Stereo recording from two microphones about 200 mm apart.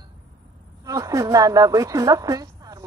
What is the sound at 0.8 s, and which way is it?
A woman's voice, 15° right (ahead or behind).